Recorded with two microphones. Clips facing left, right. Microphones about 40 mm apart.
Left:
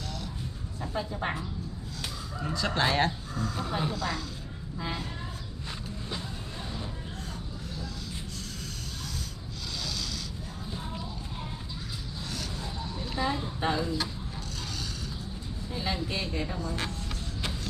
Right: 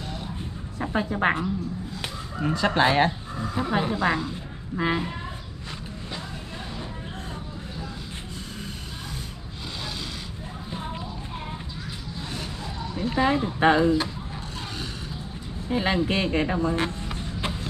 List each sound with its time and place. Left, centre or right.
0.7 s speech: right
2.0 s speech: right
4.7 s speech: right
9.8 s rub: right
10.7 s a sound: right
13.0 s speech: right
15.7 s speech: right